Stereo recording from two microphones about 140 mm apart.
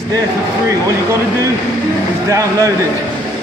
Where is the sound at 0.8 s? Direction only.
25° right (ahead or behind).